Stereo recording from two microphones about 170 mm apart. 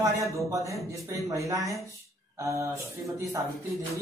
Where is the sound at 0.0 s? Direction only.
15° right (ahead or behind).